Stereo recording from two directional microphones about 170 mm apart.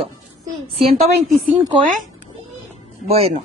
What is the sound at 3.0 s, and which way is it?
Speech, 35° right (ahead or behind).